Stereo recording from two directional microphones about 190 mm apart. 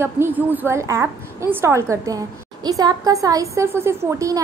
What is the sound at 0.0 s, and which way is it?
A woman's voice, 10° right (ahead or behind).